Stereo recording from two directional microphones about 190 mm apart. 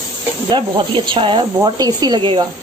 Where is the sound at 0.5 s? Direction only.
25° right (ahead or behind).